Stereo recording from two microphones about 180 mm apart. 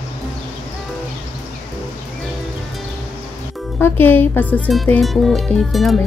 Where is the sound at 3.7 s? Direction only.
10° left (ahead or behind).